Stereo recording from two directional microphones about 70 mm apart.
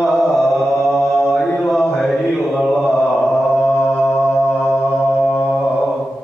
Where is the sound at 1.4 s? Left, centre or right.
Centre.